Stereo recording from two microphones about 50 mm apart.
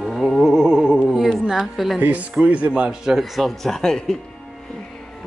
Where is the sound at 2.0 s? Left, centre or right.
Right.